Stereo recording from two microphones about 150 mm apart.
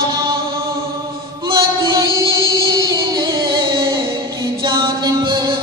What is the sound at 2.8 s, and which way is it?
Music, 25° right (ahead or behind).